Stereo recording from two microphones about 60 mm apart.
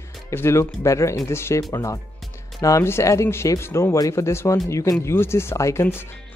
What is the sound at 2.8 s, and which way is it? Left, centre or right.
Speech, left.